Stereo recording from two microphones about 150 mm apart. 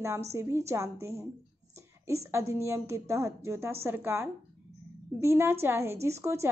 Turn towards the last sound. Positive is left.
turn(degrees=-20)  # may be behind; listen again after turning